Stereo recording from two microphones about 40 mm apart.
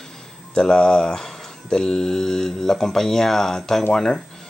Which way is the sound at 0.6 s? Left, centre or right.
Left.